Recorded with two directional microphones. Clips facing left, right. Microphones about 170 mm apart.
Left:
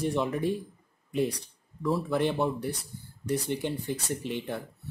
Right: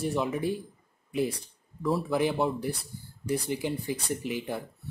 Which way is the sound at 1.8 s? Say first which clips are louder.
Even; 5° right (ahead or behind).